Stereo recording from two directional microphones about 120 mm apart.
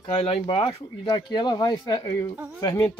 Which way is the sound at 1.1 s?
35° left (ahead or behind).